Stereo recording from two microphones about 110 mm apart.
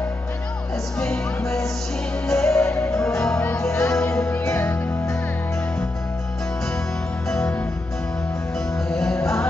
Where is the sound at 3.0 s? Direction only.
5° left (ahead or behind).